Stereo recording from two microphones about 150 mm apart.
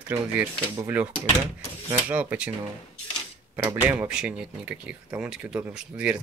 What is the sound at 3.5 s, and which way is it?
Speech, 25° right (ahead or behind).